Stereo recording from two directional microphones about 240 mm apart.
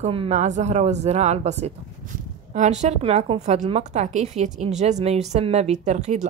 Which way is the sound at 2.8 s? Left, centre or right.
Right.